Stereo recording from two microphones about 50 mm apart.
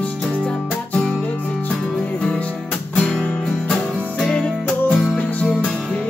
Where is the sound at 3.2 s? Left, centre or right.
Centre.